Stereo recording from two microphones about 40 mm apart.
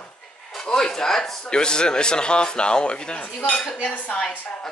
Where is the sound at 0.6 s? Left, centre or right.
Centre.